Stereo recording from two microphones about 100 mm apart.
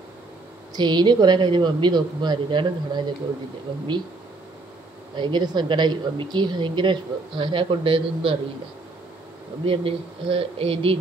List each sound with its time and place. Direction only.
0.7 s a woman's voice: 45° right (ahead or behind)
5.1 s a woman's voice: 50° right (ahead or behind)
9.7 s speech: 70° right (ahead or behind)